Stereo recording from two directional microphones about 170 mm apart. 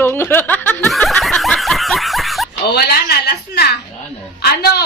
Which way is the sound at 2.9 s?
70° left (ahead or behind).